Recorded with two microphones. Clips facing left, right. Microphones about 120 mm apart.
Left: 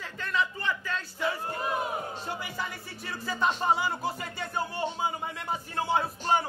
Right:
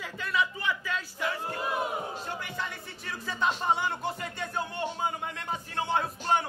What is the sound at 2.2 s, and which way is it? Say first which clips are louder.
Music: left 1 dB; 5° left (ahead or behind).